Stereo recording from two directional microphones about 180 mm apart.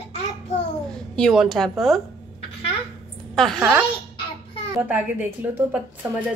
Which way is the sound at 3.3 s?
Centre (ahead or behind).